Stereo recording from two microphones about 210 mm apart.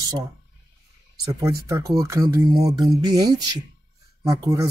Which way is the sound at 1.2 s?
15° right (ahead or behind).